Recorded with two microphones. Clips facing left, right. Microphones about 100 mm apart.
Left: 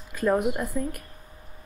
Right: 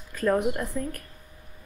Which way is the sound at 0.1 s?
10° left (ahead or behind).